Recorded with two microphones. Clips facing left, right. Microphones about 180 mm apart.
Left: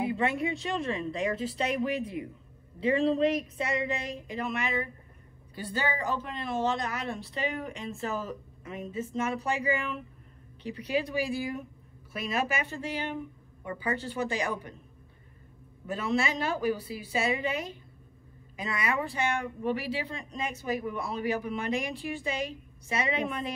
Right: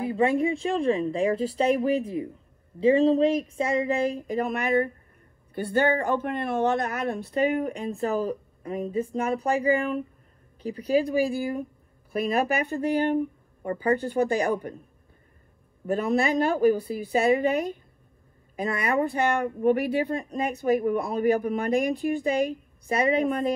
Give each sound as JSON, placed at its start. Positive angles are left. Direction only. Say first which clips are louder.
{"t": 0.1, "sound": "speech", "louder": "right 6 dB", "side_deg": -35}
{"t": 4.6, "sound": "speech", "louder": "right 8 dB", "side_deg": -55}
{"t": 7.5, "sound": "speech", "louder": "right 9 dB", "side_deg": -35}
{"t": 12.6, "sound": "speech", "louder": "right 10 dB", "side_deg": -55}
{"t": 13.6, "sound": "a woman's voice", "louder": "right 8 dB", "side_deg": -45}
{"t": 15.9, "sound": "a woman's voice", "louder": "right 6 dB", "side_deg": -55}